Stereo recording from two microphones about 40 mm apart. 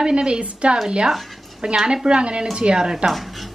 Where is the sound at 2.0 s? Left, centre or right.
Right.